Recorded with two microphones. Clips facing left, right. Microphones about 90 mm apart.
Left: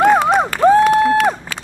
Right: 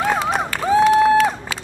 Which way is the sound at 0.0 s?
60° left (ahead or behind).